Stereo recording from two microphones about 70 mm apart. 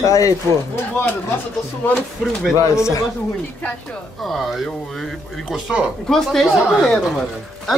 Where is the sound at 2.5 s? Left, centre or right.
Left.